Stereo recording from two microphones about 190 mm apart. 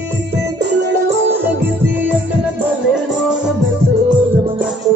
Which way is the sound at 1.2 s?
10° right (ahead or behind).